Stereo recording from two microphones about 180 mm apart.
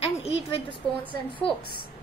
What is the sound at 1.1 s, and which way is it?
Speech, 10° left (ahead or behind).